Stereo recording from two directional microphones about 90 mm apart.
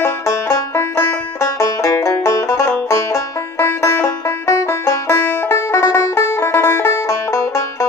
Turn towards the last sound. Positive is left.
turn(degrees=35)  # may be behind; listen again after turning